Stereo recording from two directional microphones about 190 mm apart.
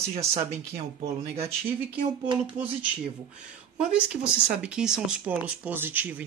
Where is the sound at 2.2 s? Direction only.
25° right (ahead or behind).